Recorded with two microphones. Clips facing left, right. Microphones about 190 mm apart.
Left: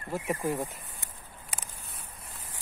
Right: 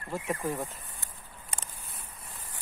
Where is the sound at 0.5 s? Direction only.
15° left (ahead or behind).